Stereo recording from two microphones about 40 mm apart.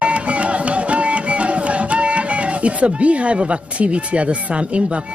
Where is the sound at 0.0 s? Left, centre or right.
Right.